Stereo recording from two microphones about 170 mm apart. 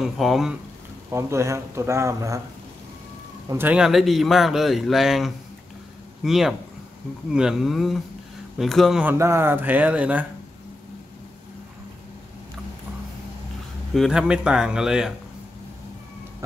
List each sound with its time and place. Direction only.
0.0 s a man's voice: centre (ahead or behind)
1.1 s speech: 15° right (ahead or behind)
3.4 s a man's voice: 10° right (ahead or behind)
9.2 s speech: 15° right (ahead or behind)
13.9 s a man's voice: 5° right (ahead or behind)